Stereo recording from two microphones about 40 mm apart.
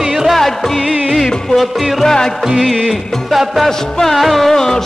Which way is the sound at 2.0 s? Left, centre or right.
Centre.